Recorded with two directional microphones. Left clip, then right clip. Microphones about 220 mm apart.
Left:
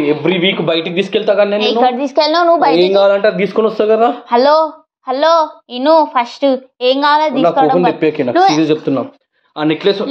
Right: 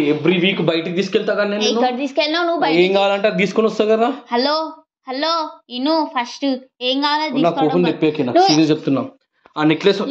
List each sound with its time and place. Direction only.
0.0 s a man's voice: 15° right (ahead or behind)
1.6 s a woman's voice: centre (ahead or behind)
3.2 s speech: 30° right (ahead or behind)
4.1 s a woman's voice: 10° left (ahead or behind)
8.9 s speech: 30° right (ahead or behind)